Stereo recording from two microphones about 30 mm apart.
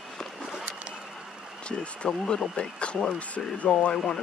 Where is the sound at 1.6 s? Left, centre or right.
Left.